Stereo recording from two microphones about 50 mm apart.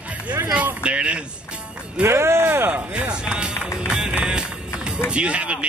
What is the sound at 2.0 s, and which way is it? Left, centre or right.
Speech, right.